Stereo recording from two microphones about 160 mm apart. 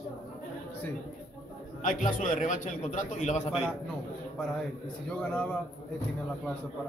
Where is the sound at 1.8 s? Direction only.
55° left (ahead or behind).